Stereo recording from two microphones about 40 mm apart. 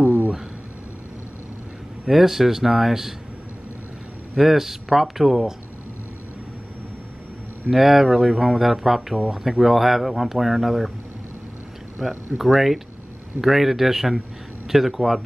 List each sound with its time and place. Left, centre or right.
0.0 s a sound: right
2.0 s speech: centre
4.4 s speech: centre
7.7 s speech: centre
12.0 s speech: centre